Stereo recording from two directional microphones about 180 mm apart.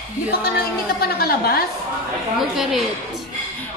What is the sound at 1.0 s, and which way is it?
Speech, 60° left (ahead or behind).